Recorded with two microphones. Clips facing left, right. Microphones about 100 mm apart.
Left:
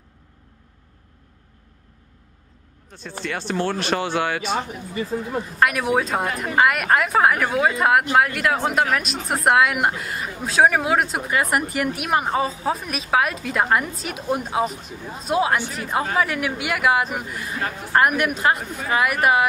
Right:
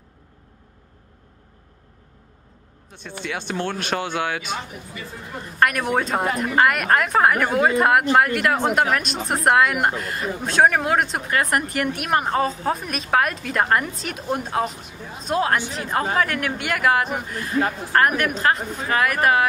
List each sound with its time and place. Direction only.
3.3 s speech: centre (ahead or behind)
5.4 s speech: 5° left (ahead or behind)